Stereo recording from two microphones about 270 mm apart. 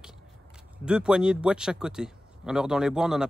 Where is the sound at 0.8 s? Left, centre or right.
Centre.